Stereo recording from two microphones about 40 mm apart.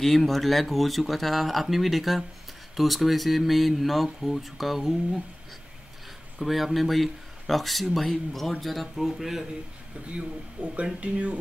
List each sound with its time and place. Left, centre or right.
0.0 s speech: centre
6.4 s speech: centre
10.1 s speech: right